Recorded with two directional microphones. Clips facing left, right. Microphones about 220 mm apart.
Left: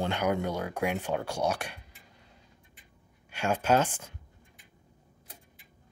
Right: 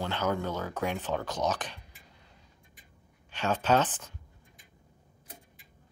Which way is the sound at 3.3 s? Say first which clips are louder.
Left 1 dB; 10° left (ahead or behind).